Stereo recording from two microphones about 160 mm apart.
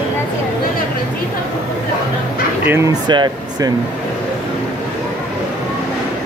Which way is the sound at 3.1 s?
25° right (ahead or behind).